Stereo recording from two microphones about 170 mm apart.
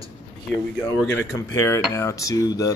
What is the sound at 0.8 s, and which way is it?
Speech, 15° left (ahead or behind).